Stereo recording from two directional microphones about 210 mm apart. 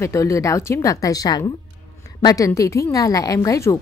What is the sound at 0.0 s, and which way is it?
A woman's voice, 15° left (ahead or behind).